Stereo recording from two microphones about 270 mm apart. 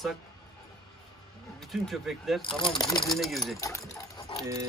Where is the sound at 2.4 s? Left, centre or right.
Centre.